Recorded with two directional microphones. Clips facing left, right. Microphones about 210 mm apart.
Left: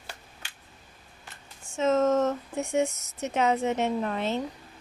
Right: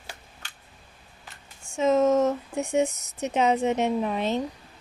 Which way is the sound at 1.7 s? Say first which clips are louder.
Right 2 dB; 10° right (ahead or behind).